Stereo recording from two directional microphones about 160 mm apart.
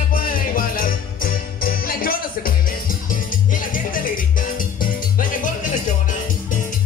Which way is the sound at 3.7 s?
60° left (ahead or behind).